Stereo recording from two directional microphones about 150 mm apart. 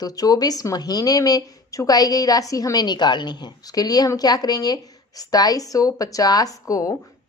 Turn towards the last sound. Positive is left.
turn(degrees=20)  # may be behind; listen again after turning